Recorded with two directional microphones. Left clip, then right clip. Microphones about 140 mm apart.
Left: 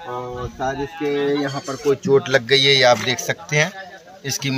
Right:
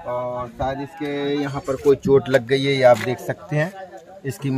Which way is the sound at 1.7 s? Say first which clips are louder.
Right 2 dB; 35° right (ahead or behind).